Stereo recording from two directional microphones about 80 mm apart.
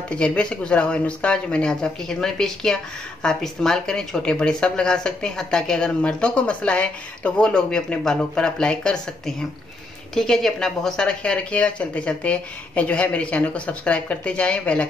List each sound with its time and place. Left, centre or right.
0.1 s speech: centre